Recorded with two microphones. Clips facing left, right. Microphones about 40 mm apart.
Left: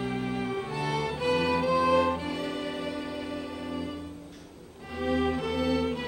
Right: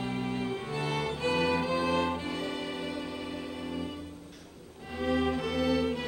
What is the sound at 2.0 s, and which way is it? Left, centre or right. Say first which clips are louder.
Music: left 3 dB; centre.